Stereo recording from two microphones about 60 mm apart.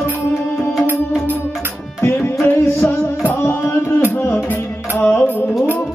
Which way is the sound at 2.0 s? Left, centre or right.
Left.